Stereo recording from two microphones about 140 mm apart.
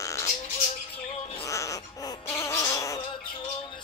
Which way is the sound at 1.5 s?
25° left (ahead or behind).